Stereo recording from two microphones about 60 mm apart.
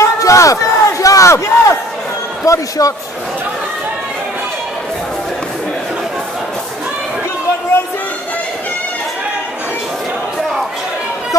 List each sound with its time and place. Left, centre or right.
0.0 s crowd: left
2.4 s speech: left